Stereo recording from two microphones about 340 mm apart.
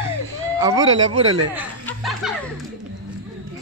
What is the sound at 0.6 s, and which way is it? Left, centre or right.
Speech, centre.